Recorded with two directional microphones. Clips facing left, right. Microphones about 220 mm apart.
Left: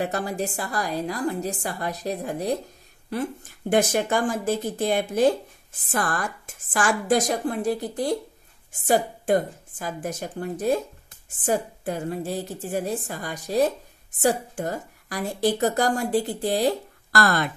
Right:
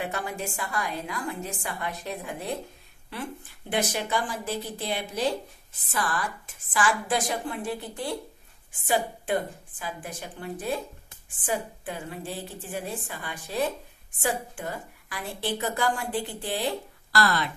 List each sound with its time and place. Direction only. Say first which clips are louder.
0.0 s a woman's voice: left 5 dB; 40° left (ahead or behind)